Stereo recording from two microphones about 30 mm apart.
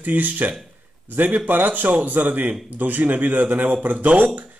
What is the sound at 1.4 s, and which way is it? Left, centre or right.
Speech, right.